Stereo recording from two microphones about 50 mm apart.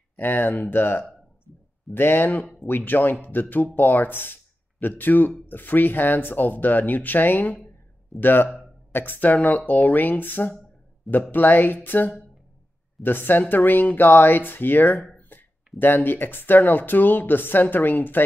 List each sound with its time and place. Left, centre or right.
0.1 s speech: left